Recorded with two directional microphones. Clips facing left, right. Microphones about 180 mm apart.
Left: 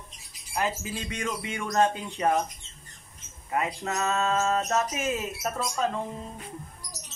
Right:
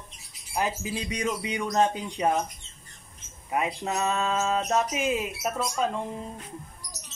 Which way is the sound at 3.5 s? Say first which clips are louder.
Right 1 dB; 15° right (ahead or behind).